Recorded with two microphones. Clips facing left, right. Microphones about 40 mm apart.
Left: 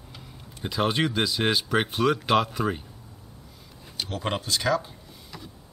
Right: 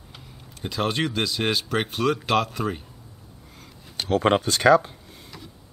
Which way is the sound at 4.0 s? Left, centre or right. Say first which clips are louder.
Right 9 dB; right.